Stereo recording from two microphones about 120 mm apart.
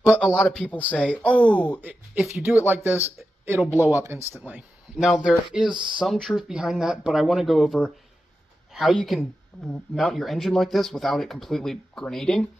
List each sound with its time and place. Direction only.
0.3 s speech: 10° left (ahead or behind)
1.8 s speech: 15° right (ahead or behind)
4.4 s speech: 10° right (ahead or behind)